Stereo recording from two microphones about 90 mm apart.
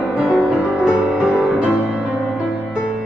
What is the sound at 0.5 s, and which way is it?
Music, 5° right (ahead or behind).